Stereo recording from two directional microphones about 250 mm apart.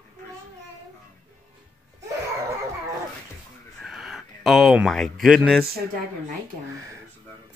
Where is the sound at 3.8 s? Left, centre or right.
Centre.